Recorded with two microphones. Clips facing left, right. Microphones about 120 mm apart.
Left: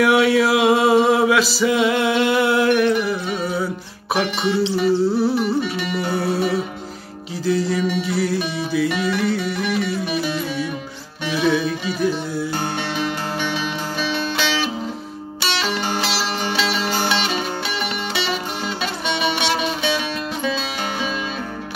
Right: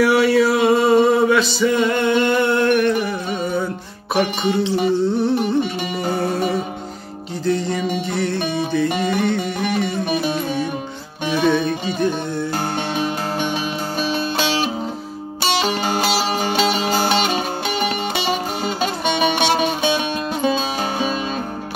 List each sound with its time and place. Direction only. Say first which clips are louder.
0.0 s mantra: right 1 dB; centre (ahead or behind)
2.9 s music: even; 45° right (ahead or behind)
3.4 s music: right 1 dB; 5° left (ahead or behind)
4.6 s music: even; 50° right (ahead or behind)
5.0 s music: even; 5° left (ahead or behind)
5.6 s music: right 1 dB; 45° right (ahead or behind)
6.1 s music: left 1 dB; 5° left (ahead or behind)
7.4 s music: left 1 dB; 5° left (ahead or behind)
8.8 s music: right 1 dB; 45° right (ahead or behind)
11.4 s music: right 1 dB; 5° left (ahead or behind)
12.5 s music: right 2 dB; 45° right (ahead or behind)